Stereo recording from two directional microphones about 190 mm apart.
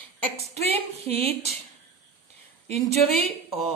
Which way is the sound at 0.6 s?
30° right (ahead or behind).